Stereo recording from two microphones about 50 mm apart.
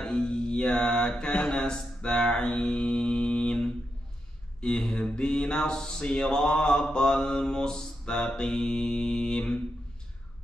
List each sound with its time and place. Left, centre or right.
0.0 s mantra: centre
4.6 s speech: centre